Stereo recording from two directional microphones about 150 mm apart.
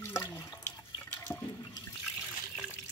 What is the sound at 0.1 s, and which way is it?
Water, 20° left (ahead or behind).